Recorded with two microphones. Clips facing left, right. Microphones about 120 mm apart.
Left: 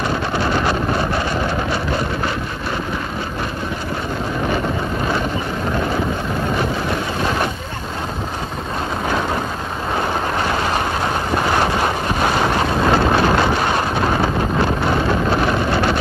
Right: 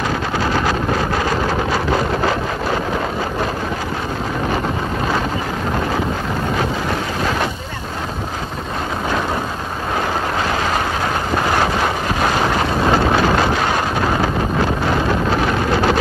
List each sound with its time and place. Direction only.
0.7 s wind noise: 90° right
12.4 s vehicle: 10° right (ahead or behind)
13.2 s wind noise: 5° left (ahead or behind)